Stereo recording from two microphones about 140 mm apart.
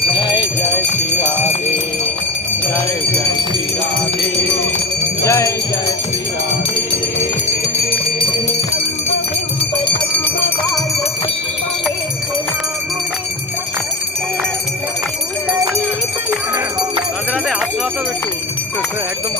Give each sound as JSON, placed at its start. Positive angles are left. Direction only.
{"t": 0.1, "sound": "jingle bell", "side_deg": 35}
{"t": 5.2, "sound": "jingle bell", "side_deg": 20}